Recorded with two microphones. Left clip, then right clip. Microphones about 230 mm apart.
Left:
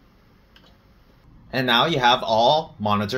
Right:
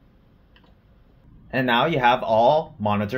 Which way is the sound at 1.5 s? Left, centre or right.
Centre.